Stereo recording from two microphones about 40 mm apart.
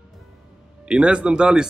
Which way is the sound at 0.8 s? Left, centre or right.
Right.